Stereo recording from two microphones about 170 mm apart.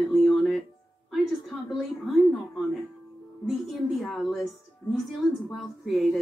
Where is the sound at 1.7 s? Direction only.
Centre (ahead or behind).